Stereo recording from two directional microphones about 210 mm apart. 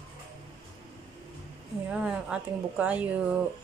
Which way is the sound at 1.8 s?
5° right (ahead or behind).